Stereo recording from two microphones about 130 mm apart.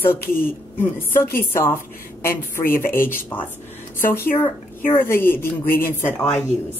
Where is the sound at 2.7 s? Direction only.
15° left (ahead or behind).